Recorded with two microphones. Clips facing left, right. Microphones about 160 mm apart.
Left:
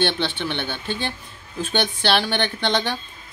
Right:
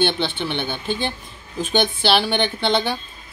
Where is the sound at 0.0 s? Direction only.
10° right (ahead or behind).